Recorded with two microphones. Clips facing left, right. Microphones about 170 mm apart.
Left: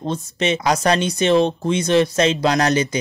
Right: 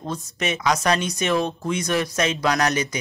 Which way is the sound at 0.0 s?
25° left (ahead or behind).